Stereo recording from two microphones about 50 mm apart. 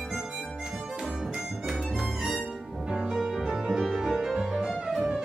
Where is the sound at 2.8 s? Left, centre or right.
Centre.